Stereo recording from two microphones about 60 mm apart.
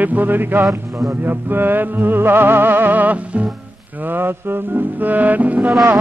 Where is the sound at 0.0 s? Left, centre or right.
Right.